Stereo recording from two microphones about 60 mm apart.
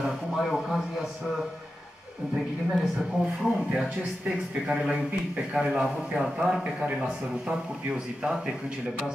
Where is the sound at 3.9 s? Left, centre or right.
Right.